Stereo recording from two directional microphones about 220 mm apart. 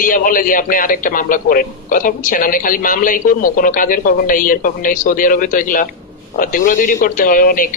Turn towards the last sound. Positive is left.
turn(degrees=40)  # may be behind; listen again after turning